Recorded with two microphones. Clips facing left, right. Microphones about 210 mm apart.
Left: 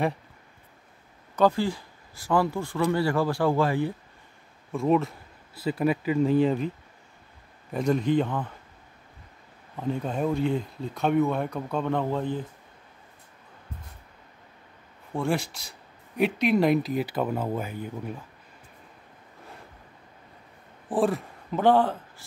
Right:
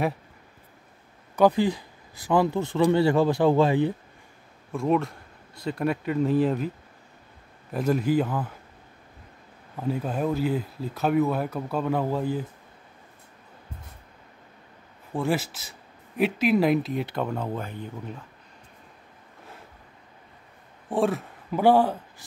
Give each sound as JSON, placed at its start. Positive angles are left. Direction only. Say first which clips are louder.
{"t": 1.3, "sound": "speech", "louder": "right 3 dB", "side_deg": -15}
{"t": 4.7, "sound": "speech", "louder": "left 1 dB", "side_deg": 0}
{"t": 7.7, "sound": "speech", "louder": "even", "side_deg": -5}
{"t": 9.8, "sound": "speech", "louder": "right 1 dB", "side_deg": -5}
{"t": 15.1, "sound": "speech", "louder": "right 1 dB", "side_deg": 0}
{"t": 20.9, "sound": "speech", "louder": "even", "side_deg": 0}